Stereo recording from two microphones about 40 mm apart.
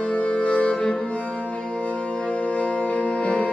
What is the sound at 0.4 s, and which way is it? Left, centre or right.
Music, left.